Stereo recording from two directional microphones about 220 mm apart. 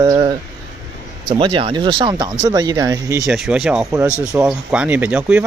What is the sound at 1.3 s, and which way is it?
Speech, 25° right (ahead or behind).